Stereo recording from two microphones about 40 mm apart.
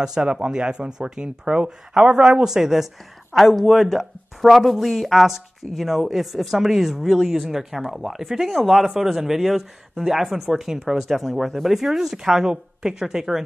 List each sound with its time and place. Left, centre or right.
0.2 s speech: right
0.5 s speech: centre